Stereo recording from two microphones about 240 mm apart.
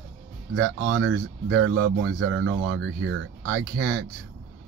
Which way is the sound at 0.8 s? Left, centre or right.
Right.